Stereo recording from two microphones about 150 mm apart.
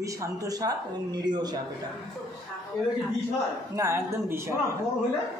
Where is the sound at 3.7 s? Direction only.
20° right (ahead or behind).